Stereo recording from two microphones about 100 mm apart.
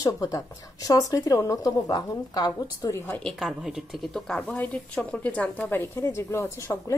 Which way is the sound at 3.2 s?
5° left (ahead or behind).